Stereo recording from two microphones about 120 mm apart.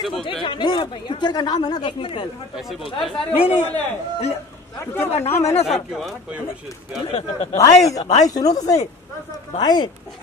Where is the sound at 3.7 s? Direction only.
60° left (ahead or behind).